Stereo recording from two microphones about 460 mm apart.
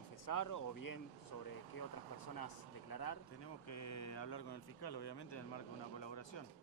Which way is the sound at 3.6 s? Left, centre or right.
Left.